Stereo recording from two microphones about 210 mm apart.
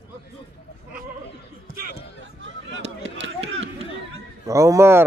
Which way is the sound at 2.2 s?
60° right (ahead or behind).